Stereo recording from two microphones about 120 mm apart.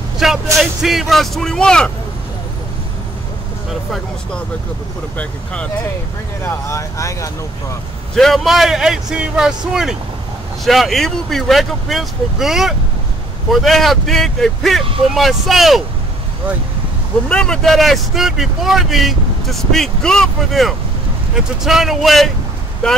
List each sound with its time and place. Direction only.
0.2 s speech: 5° right (ahead or behind)
5.1 s speech: 10° left (ahead or behind)
6.4 s speech: 25° left (ahead or behind)
8.2 s speech: centre (ahead or behind)
17.3 s speech: 5° left (ahead or behind)